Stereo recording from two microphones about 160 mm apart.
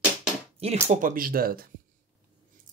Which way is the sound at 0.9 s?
55° right (ahead or behind).